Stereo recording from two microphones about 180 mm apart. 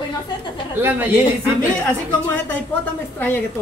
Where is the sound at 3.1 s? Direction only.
10° left (ahead or behind).